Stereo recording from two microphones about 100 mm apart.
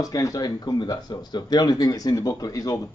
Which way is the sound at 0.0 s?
35° left (ahead or behind).